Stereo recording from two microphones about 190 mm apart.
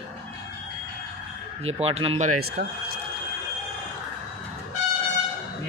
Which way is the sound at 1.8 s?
30° right (ahead or behind).